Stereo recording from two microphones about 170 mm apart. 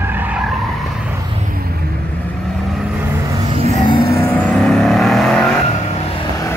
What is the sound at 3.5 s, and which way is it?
Music, 35° right (ahead or behind).